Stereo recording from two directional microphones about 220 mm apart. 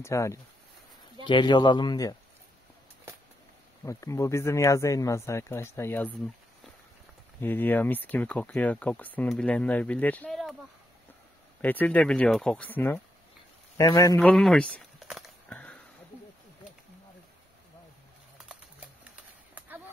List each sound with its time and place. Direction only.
0.0 s a man's voice: 15° left (ahead or behind)
3.8 s speech: 15° left (ahead or behind)
7.3 s speech: 10° left (ahead or behind)
11.6 s speech: 5° left (ahead or behind)
13.7 s walk: 15° left (ahead or behind)